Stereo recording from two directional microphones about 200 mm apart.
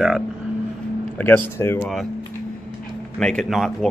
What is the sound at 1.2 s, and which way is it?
Speech, 10° left (ahead or behind).